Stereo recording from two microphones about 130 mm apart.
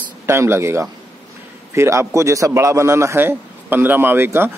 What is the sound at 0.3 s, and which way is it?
A man's voice, 20° right (ahead or behind).